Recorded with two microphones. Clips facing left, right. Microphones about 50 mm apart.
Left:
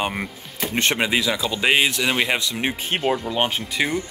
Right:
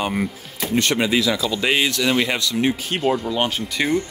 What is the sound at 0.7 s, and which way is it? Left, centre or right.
Speech, left.